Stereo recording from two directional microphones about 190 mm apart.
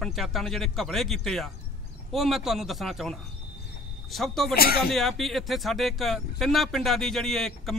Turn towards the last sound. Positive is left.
turn(degrees=0)  # may be behind; listen again after turning